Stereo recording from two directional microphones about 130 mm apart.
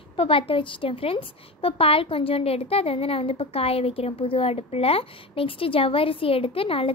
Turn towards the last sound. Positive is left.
turn(degrees=45)  # may be behind; listen again after turning